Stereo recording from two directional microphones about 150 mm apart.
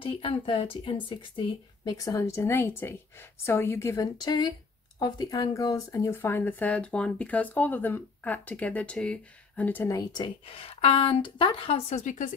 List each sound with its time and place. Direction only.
0.0 s a woman's voice: 35° left (ahead or behind)
12.0 s speech: 55° left (ahead or behind)